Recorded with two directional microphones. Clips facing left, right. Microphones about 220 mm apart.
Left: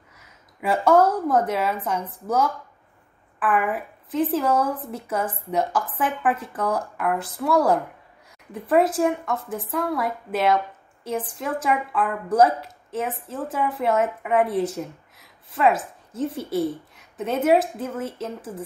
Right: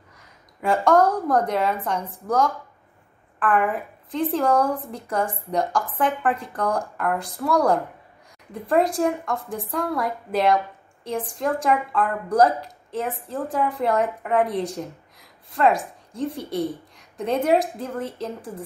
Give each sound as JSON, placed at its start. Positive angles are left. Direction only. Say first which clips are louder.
{"t": 0.2, "sound": "a woman's voice", "louder": "right 1 dB", "side_deg": 5}